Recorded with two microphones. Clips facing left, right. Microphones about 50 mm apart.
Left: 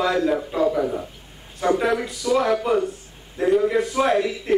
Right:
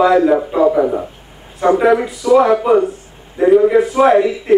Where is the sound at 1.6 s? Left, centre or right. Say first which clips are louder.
Right 8 dB; centre.